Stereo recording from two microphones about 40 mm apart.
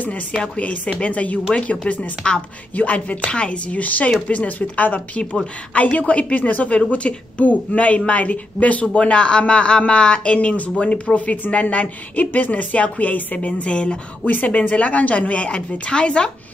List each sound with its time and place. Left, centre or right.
0.6 s a woman's voice: left
3.3 s a woman's voice: left
8.8 s a woman's voice: left
13.6 s speech: left
14.2 s a woman's voice: left